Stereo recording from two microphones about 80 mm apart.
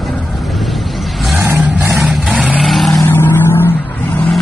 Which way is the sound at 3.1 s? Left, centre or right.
Left.